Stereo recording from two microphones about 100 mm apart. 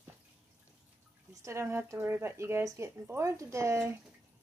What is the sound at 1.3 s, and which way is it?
Speech, 30° right (ahead or behind).